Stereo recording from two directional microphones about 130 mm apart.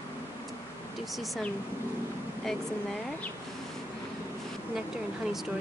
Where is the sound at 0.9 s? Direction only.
Centre (ahead or behind).